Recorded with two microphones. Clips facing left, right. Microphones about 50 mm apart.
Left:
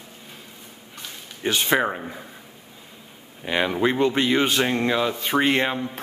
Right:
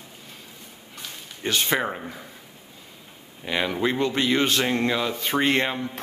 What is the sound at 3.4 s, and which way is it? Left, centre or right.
Speech, centre.